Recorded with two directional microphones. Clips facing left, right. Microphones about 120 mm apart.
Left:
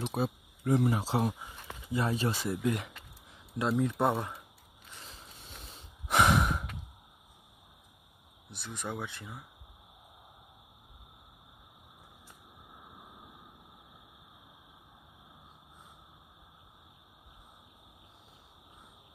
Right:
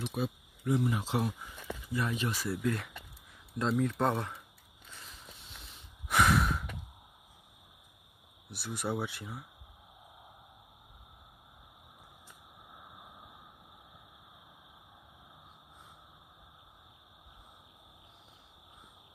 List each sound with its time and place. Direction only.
0.1 s speech: 40° left (ahead or behind)
2.4 s speech: 20° left (ahead or behind)
6.0 s breathing: 25° left (ahead or behind)
8.5 s speech: 5° right (ahead or behind)